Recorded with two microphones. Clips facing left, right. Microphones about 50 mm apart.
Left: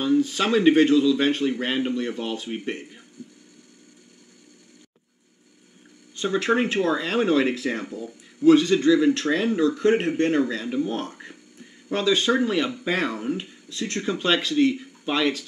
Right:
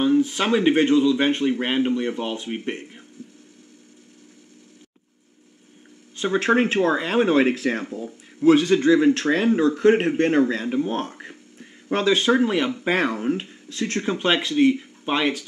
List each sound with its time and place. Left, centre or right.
0.2 s speech: centre
1.5 s speech: right
1.8 s speech: centre
6.1 s speech: right
12.3 s speech: right
14.0 s speech: right